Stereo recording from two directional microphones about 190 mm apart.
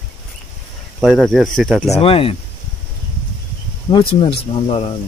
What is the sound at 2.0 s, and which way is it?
Speech, 30° left (ahead or behind).